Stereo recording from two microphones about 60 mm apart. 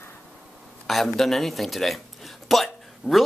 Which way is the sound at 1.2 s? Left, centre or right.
Centre.